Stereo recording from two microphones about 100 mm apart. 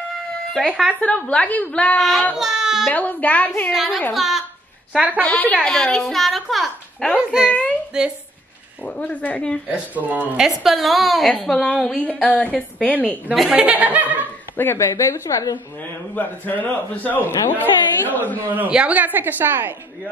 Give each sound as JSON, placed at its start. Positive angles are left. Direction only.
{"t": 0.5, "sound": "a woman's voice", "side_deg": 5}
{"t": 2.0, "sound": "a child's voice", "side_deg": 0}
{"t": 2.3, "sound": "baby cry", "side_deg": -5}
{"t": 2.9, "sound": "a woman's voice", "side_deg": 15}
{"t": 3.7, "sound": "a child's voice", "side_deg": 0}
{"t": 5.2, "sound": "a woman's voice", "side_deg": 15}
{"t": 8.8, "sound": "a woman's voice", "side_deg": 15}
{"t": 9.7, "sound": "speech", "side_deg": -15}
{"t": 10.6, "sound": "a child's voice", "side_deg": 0}
{"t": 13.3, "sound": "speech", "side_deg": -10}
{"t": 14.6, "sound": "a woman's voice", "side_deg": 25}
{"t": 16.2, "sound": "a woman's voice", "side_deg": 15}
{"t": 18.5, "sound": "speech", "side_deg": -15}